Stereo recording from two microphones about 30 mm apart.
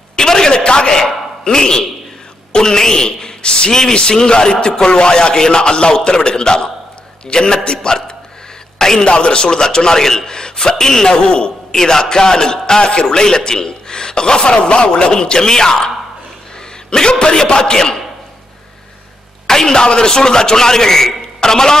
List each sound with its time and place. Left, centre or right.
0.2 s a sound: centre
1.4 s a man's voice: left
8.7 s a sound: centre
9.0 s a man's voice: left
11.1 s speech: left
11.7 s a man's voice: centre
16.9 s a man's voice: left
19.4 s a man's voice: centre